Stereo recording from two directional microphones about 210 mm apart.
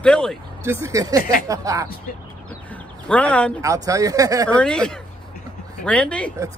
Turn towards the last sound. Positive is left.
turn(degrees=5)  # may be behind; listen again after turning